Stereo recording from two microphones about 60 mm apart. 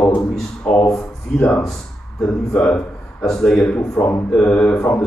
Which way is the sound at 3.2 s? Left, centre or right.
Centre.